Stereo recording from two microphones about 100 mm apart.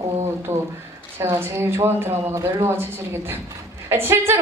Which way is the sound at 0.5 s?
25° right (ahead or behind).